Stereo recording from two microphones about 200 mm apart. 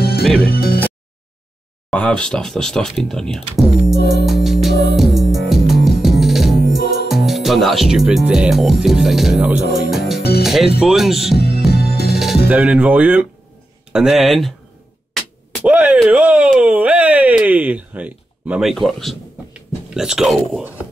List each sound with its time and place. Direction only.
0.4 s speech: 50° left (ahead or behind)
1.9 s speech: 5° left (ahead or behind)
3.9 s music: 50° left (ahead or behind)
4.3 s music: centre (ahead or behind)
6.8 s music: 50° left (ahead or behind)
7.1 s speech: centre (ahead or behind)
10.4 s music: centre (ahead or behind)
10.8 s speech: centre (ahead or behind)
11.3 s music: 50° left (ahead or behind)
12.4 s speech: 5° right (ahead or behind)
15.5 s speech: 5° right (ahead or behind)